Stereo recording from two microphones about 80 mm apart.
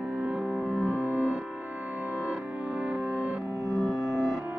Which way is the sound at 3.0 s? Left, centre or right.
Centre.